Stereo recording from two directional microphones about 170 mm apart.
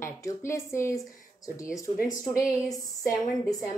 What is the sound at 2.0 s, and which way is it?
Speech, 20° left (ahead or behind).